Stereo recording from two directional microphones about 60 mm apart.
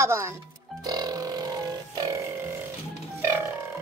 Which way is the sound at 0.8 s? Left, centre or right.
Right.